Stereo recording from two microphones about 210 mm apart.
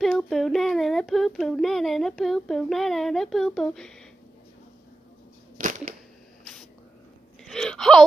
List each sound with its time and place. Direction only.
0.0 s speech: centre (ahead or behind)
5.6 s a sound: 40° right (ahead or behind)
7.4 s gasp: centre (ahead or behind)